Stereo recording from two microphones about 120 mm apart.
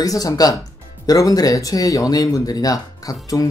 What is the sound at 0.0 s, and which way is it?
Speech, 30° left (ahead or behind).